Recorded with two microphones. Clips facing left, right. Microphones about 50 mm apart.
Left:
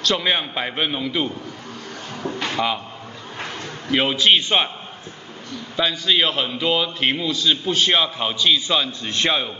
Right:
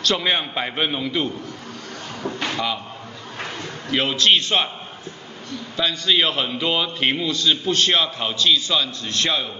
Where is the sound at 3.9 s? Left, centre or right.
Centre.